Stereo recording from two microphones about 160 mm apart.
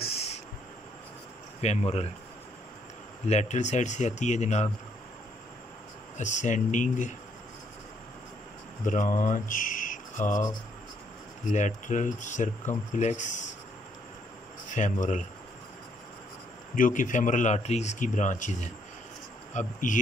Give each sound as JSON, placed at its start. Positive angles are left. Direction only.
{"t": 0.0, "sound": "owl", "side_deg": 40}
{"t": 1.6, "sound": "speech", "side_deg": 40}
{"t": 3.3, "sound": "speech", "side_deg": 45}
{"t": 6.1, "sound": "speech", "side_deg": 50}
{"t": 8.8, "sound": "a sound", "side_deg": 55}
{"t": 11.4, "sound": "speech", "side_deg": 50}
{"t": 14.8, "sound": "speech", "side_deg": 50}
{"t": 16.7, "sound": "speech", "side_deg": 55}